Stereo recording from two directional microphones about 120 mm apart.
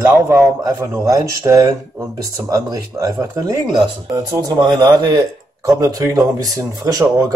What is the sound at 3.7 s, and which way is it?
A man's voice, 40° right (ahead or behind).